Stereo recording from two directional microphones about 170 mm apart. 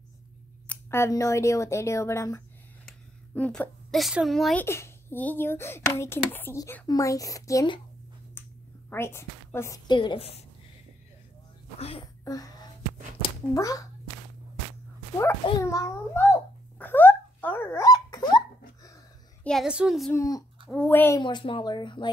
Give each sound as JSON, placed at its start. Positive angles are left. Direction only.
{"t": 0.7, "sound": "speech", "side_deg": 15}
{"t": 2.8, "sound": "a woman's voice", "side_deg": 5}
{"t": 4.6, "sound": "a child's voice", "side_deg": 15}
{"t": 8.4, "sound": "a sound", "side_deg": 15}
{"t": 8.9, "sound": "speech", "side_deg": 15}
{"t": 9.8, "sound": "a woman's voice", "side_deg": 30}
{"t": 12.3, "sound": "speech", "side_deg": 20}
{"t": 15.6, "sound": "babbling", "side_deg": 15}
{"t": 19.4, "sound": "a woman's voice", "side_deg": 0}
{"t": 20.1, "sound": "speech", "side_deg": 20}
{"t": 21.2, "sound": "speech", "side_deg": 25}